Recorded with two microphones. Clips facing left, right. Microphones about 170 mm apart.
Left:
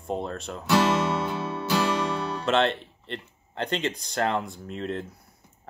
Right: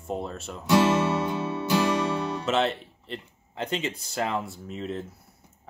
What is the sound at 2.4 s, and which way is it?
Speech, 5° right (ahead or behind).